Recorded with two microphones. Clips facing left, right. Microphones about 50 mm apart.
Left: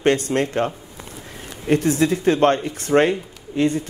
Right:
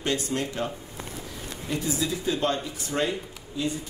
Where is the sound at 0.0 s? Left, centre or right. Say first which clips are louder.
Left 9 dB; left.